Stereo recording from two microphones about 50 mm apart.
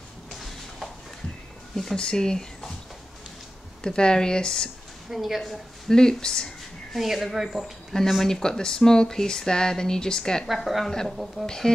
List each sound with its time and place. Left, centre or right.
0.3 s a sound: centre
2.0 s speech: centre
3.8 s speech: centre
5.1 s speech: centre
5.4 s speech: centre
6.9 s speech: centre
7.9 s speech: centre
10.5 s speech: centre
10.9 s speech: centre